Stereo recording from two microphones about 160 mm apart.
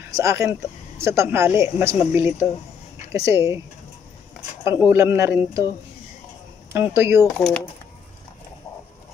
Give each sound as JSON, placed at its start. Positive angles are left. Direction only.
{"t": 0.1, "sound": "speech", "side_deg": -20}
{"t": 4.6, "sound": "speech", "side_deg": -15}
{"t": 6.7, "sound": "speech", "side_deg": -15}
{"t": 7.2, "sound": "speech", "side_deg": 5}